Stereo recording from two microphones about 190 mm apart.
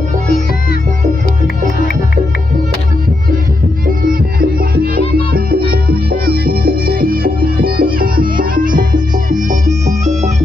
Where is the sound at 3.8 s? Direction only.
50° right (ahead or behind).